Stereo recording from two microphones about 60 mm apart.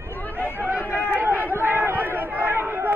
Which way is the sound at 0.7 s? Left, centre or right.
Right.